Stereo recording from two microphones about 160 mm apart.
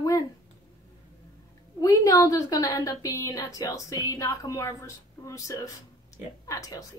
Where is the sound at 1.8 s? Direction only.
20° left (ahead or behind).